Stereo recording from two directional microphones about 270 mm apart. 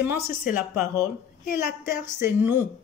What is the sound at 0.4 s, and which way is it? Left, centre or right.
Speech, left.